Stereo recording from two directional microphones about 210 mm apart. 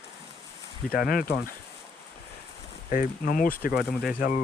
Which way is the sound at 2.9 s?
40° left (ahead or behind).